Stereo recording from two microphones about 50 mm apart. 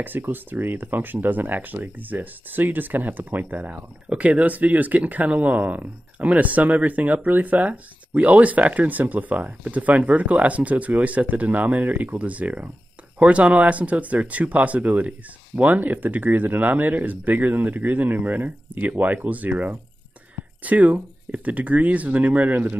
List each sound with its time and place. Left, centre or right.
0.0 s speech: right